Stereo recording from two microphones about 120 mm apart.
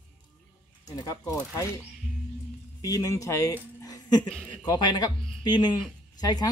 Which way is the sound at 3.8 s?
30° left (ahead or behind).